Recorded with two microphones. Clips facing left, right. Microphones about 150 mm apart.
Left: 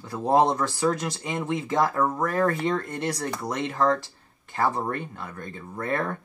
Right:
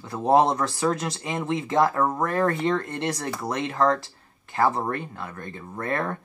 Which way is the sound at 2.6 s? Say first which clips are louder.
Right 1 dB; 30° right (ahead or behind).